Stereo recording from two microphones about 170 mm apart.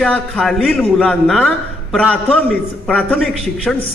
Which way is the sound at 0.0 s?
5° left (ahead or behind).